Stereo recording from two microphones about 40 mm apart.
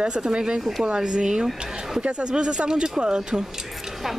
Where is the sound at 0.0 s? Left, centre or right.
Right.